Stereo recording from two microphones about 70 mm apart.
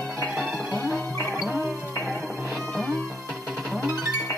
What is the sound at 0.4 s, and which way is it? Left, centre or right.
Music, centre.